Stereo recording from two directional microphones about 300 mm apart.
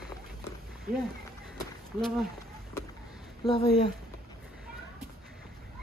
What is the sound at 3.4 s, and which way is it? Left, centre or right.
Speech, centre.